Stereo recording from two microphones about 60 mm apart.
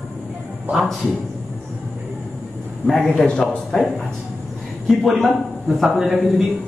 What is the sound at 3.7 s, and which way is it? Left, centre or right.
Speech, left.